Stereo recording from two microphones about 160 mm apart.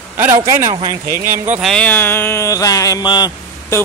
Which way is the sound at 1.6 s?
10° left (ahead or behind).